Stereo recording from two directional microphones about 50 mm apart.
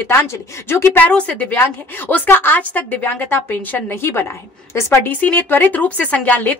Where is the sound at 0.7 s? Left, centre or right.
Left.